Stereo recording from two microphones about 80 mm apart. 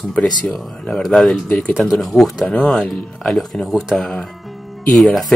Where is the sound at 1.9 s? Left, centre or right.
Centre.